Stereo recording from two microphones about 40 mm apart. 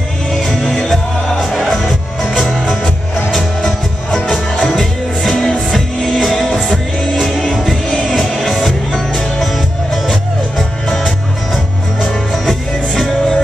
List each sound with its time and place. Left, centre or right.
0.3 s music: centre
1.4 s music: centre
5.7 s music: centre
11.1 s music: centre